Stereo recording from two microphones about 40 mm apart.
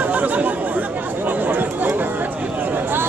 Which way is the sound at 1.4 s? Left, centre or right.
Right.